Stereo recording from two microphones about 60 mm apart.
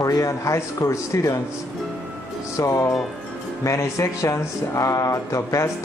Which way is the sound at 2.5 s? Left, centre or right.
Left.